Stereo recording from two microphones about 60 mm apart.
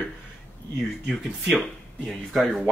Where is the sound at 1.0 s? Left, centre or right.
Centre.